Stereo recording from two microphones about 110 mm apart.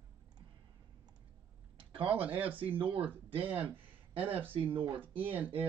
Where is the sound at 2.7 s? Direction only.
55° right (ahead or behind).